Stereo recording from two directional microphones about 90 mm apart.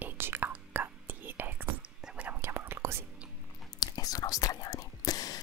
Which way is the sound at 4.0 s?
45° left (ahead or behind).